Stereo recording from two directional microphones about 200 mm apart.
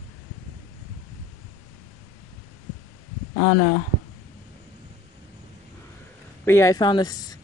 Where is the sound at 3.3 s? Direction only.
40° left (ahead or behind).